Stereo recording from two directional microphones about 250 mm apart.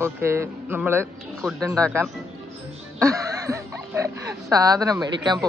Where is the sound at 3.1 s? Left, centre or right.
Centre.